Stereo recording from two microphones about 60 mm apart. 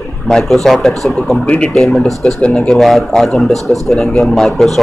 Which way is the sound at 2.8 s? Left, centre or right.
Centre.